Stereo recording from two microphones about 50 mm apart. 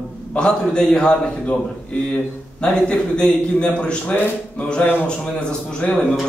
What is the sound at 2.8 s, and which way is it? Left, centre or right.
A man's voice, centre.